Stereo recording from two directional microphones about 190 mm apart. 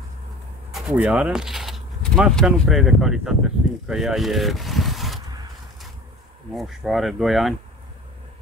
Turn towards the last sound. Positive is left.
turn(degrees=0)  # may be behind; listen again after turning